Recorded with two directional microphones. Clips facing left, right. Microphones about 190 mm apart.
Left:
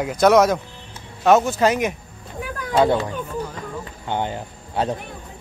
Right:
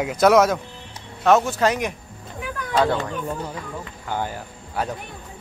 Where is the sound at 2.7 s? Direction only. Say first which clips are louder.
Left 3 dB; 20° left (ahead or behind).